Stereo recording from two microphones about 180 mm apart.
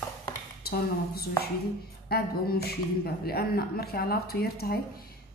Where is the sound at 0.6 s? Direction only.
60° left (ahead or behind).